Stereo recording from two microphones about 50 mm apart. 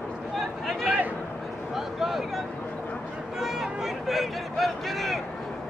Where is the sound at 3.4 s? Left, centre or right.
Centre.